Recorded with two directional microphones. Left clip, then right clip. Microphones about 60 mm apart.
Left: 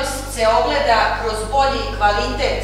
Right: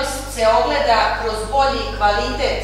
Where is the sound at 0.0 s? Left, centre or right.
Centre.